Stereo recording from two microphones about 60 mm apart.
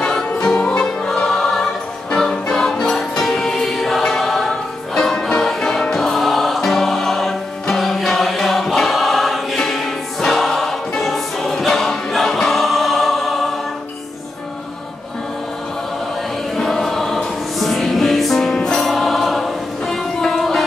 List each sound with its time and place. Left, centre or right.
0.6 s choir: centre
9.6 s music: centre
16.5 s music: centre